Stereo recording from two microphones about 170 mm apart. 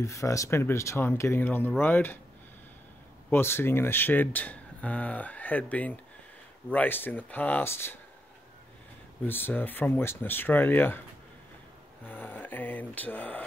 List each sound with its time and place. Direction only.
0.0 s speech: 15° left (ahead or behind)
3.3 s speech: 15° left (ahead or behind)
9.2 s speech: 10° left (ahead or behind)
12.1 s speech: 10° left (ahead or behind)